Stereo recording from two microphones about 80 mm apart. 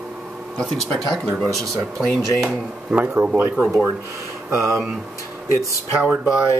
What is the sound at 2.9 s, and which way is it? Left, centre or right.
Speech, centre.